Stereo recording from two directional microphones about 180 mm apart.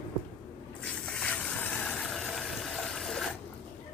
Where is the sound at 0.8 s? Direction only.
5° left (ahead or behind).